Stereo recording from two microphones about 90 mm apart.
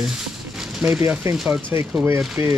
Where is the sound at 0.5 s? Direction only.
5° right (ahead or behind).